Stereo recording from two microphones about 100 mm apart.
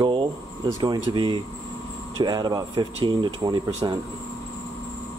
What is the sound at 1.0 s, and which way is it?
Speech, 45° right (ahead or behind).